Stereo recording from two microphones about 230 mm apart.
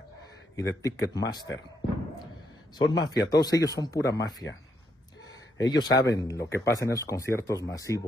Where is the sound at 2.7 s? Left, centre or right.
Centre.